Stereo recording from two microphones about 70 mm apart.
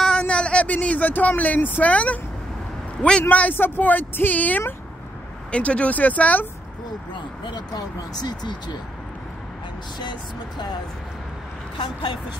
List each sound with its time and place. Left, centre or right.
0.0 s speech: centre
7.5 s speech: left
11.8 s a woman's voice: left